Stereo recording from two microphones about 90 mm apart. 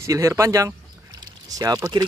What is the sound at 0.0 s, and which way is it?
Speech, 35° right (ahead or behind).